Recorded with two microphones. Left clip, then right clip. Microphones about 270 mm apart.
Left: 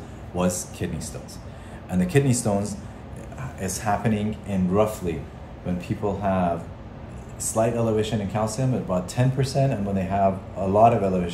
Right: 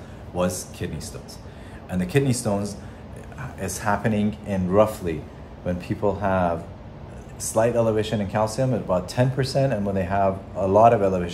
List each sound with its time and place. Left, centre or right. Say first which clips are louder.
0.4 s a man's voice: right 1 dB; centre
7.5 s speech: right 2 dB; centre